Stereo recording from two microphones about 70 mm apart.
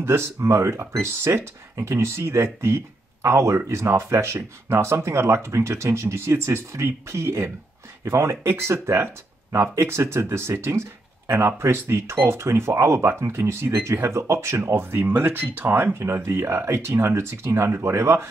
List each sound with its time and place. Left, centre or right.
0.0 s speech: right